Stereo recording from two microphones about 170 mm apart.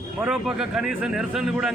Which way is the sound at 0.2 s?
5° right (ahead or behind).